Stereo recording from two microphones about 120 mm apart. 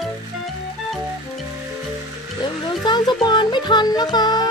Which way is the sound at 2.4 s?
35° left (ahead or behind).